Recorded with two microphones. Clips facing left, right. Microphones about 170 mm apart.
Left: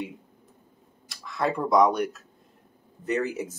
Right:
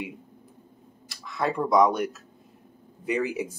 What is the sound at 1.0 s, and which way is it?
Speech, centre (ahead or behind).